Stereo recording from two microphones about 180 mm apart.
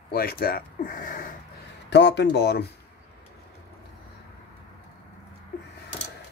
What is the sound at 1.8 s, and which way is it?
Speech, 75° left (ahead or behind).